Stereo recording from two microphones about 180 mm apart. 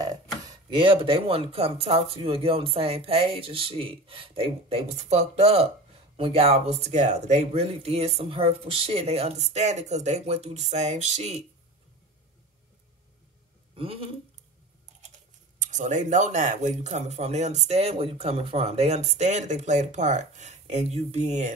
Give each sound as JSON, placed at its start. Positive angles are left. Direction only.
{"t": 0.0, "sound": "speech", "side_deg": -20}
{"t": 13.7, "sound": "speech", "side_deg": -30}
{"t": 15.6, "sound": "speech", "side_deg": -45}